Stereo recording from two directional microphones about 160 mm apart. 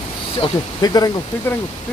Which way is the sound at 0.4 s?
25° left (ahead or behind).